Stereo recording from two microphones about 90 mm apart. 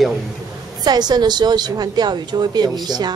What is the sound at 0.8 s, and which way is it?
A woman's voice, 50° right (ahead or behind).